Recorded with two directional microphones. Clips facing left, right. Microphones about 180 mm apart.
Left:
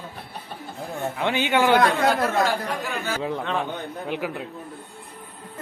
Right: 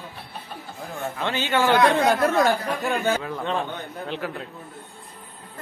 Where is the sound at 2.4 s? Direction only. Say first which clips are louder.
Right 2 dB; 50° right (ahead or behind).